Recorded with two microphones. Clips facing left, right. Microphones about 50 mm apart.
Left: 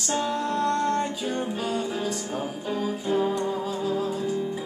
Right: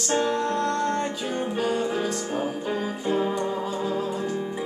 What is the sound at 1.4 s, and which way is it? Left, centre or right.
Music, centre.